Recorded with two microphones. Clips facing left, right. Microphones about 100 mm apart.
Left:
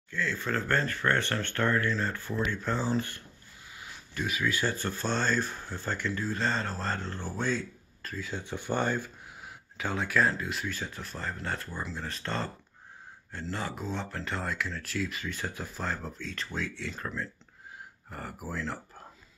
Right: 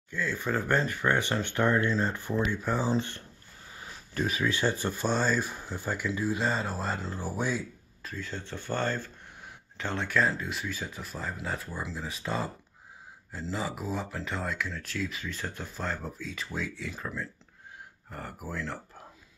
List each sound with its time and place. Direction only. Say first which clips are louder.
0.1 s speech: right 1 dB; 15° right (ahead or behind)
3.0 s speech: right 1 dB; 30° right (ahead or behind)
3.7 s a sound: right 4 dB; 35° right (ahead or behind)
4.7 s speech: right 2 dB; 15° right (ahead or behind)